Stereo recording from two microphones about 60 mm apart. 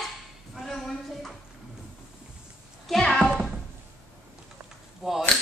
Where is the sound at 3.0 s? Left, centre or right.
Centre.